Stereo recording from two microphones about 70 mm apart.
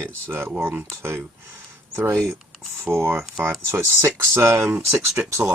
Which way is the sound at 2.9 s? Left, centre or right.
Right.